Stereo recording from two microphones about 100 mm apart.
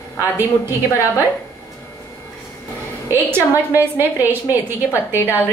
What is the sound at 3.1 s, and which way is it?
A woman's voice, 25° right (ahead or behind).